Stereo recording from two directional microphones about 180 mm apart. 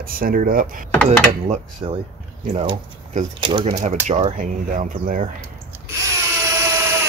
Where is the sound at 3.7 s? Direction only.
40° right (ahead or behind).